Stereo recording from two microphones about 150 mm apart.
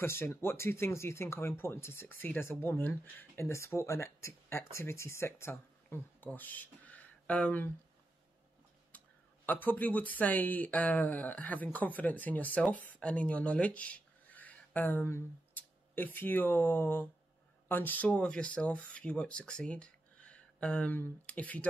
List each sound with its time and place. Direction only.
0.0 s speech: 15° left (ahead or behind)
9.5 s speech: 10° left (ahead or behind)